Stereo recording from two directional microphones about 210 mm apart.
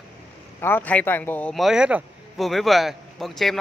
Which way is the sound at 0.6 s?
10° left (ahead or behind).